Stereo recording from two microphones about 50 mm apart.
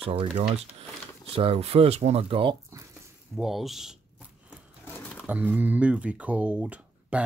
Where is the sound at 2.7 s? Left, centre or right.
Right.